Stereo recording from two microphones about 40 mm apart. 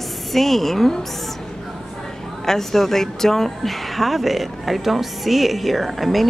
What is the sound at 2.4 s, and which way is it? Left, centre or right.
Speech, centre.